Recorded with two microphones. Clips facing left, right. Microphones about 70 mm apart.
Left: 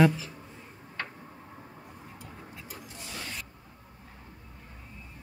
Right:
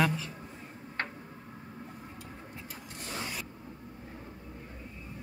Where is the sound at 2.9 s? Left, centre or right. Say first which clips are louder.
Right 4 dB; right.